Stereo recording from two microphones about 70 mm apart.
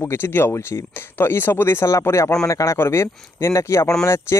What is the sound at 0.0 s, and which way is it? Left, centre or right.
Speech, left.